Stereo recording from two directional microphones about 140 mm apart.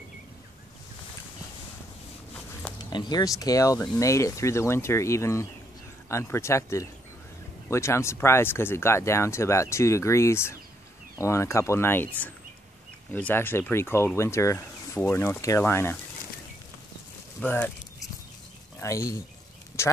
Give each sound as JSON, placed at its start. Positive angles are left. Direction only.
{"t": 2.8, "sound": "speech", "side_deg": 30}
{"t": 18.8, "sound": "speech", "side_deg": 20}